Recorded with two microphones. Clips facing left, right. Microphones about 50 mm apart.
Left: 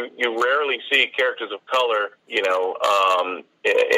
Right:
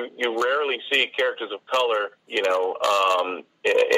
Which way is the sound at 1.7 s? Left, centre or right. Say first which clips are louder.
Left 2 dB; left.